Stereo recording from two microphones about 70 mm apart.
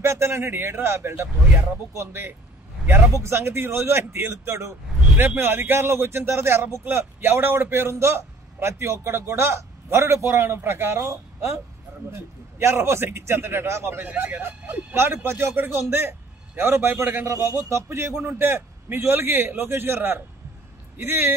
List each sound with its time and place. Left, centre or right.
0.0 s a man's voice: right
17.3 s a man's voice: right